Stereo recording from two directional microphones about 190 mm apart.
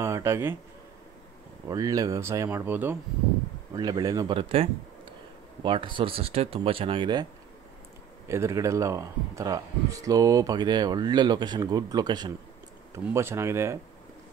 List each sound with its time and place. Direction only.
0.0 s speech: 15° right (ahead or behind)
1.7 s a man's voice: 20° right (ahead or behind)
8.3 s a man's voice: 15° right (ahead or behind)